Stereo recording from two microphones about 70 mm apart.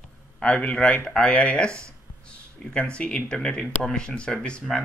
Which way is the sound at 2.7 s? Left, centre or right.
Centre.